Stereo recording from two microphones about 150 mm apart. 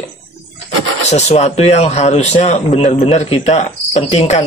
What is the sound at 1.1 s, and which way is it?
Speech, 45° left (ahead or behind).